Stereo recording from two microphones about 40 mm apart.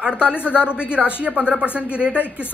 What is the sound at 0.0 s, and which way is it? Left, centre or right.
A woman's voice, right.